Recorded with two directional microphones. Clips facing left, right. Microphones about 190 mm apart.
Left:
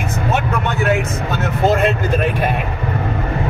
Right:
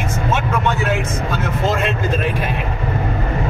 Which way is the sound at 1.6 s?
55° left (ahead or behind).